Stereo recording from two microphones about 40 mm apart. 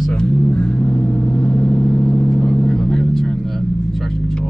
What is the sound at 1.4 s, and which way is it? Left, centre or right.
Vehicle, centre.